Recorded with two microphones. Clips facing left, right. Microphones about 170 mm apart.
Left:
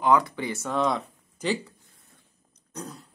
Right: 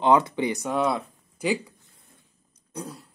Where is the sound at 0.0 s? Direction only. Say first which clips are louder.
Right 2 dB; 25° right (ahead or behind).